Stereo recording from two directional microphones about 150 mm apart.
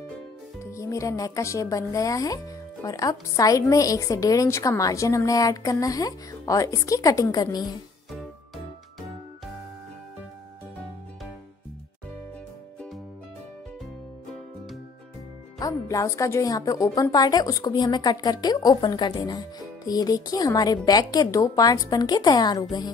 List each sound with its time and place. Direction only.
0.6 s a woman's voice: 20° left (ahead or behind)
15.6 s a woman's voice: 20° left (ahead or behind)